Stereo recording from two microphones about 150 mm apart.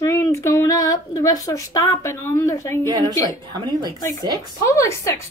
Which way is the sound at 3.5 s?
30° right (ahead or behind).